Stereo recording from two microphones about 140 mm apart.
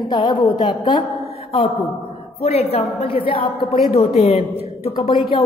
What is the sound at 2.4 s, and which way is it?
A woman's voice, 45° left (ahead or behind).